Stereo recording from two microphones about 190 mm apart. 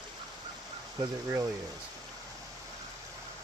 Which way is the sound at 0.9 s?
15° right (ahead or behind).